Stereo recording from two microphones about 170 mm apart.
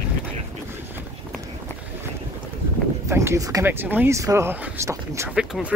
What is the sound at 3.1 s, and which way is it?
Speech, 15° right (ahead or behind).